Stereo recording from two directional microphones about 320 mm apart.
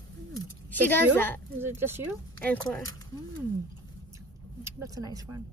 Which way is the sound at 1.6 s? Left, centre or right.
Centre.